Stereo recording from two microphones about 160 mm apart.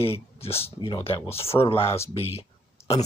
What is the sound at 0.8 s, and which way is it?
Speech, 30° left (ahead or behind).